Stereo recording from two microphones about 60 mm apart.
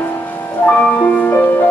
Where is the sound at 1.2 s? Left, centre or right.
Left.